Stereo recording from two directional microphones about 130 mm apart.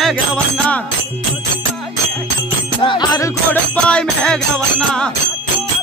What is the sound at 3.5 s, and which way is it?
Music, 10° left (ahead or behind).